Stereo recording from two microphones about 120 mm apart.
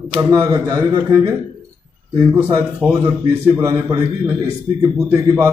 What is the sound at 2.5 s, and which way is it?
Speech, 25° right (ahead or behind).